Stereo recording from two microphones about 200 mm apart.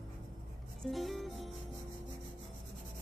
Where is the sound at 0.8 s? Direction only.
Centre (ahead or behind).